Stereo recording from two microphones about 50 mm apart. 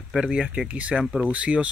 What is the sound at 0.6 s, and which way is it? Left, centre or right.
Speech, right.